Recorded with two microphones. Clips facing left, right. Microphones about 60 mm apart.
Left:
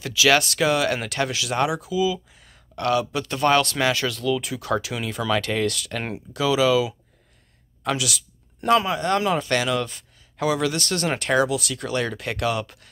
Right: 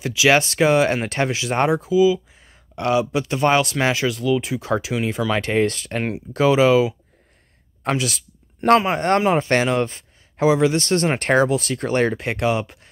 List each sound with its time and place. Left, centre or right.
0.0 s speech: right
2.4 s speech: right
7.8 s a sound: right
8.7 s speech: right